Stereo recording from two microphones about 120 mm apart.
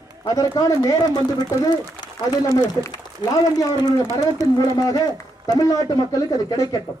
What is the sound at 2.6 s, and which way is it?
A man's voice, 35° left (ahead or behind).